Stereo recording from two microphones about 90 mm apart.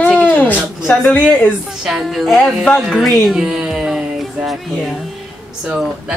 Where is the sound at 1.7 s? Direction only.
5° right (ahead or behind).